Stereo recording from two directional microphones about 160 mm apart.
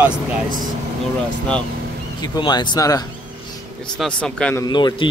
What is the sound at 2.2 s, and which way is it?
Speech, 25° left (ahead or behind).